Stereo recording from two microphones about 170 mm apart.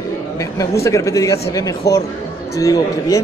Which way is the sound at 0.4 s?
20° left (ahead or behind).